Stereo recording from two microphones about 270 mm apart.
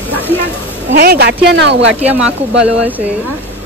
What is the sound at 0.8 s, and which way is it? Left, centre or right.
Speech, right.